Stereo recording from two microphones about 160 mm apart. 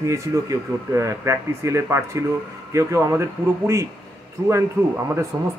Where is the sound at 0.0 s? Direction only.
20° right (ahead or behind).